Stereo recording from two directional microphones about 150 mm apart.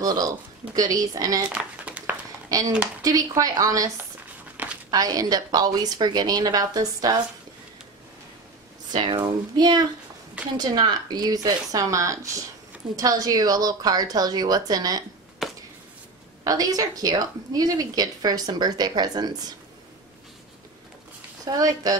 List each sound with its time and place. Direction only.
0.0 s a woman's voice: 25° right (ahead or behind)
1.5 s a sound: 10° right (ahead or behind)
2.5 s a woman's voice: 25° right (ahead or behind)
4.6 s a sound: 10° right (ahead or behind)
4.9 s a woman's voice: 25° right (ahead or behind)
8.9 s a woman's voice: 30° right (ahead or behind)
15.4 s a sound: centre (ahead or behind)
16.4 s a woman's voice: 25° right (ahead or behind)
21.5 s a woman's voice: 25° right (ahead or behind)